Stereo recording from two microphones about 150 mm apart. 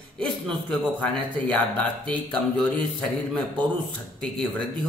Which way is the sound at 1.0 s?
10° left (ahead or behind).